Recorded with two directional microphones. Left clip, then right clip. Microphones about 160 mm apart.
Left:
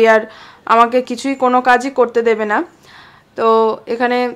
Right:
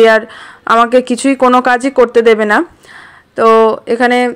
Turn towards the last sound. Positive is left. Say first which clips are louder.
# right 5 dB
turn(degrees=-30)  # may be behind; listen again after turning